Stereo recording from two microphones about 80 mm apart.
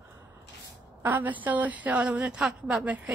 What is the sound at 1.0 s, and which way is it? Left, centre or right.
A woman's voice, right.